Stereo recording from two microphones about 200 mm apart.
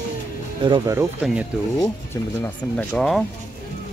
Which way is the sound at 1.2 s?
Centre (ahead or behind).